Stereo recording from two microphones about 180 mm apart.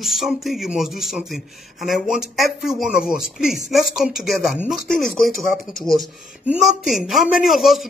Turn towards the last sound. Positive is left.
turn(degrees=0)  # may be behind; listen again after turning